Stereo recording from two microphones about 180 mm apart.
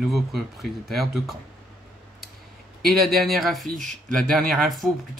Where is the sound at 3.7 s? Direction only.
45° right (ahead or behind).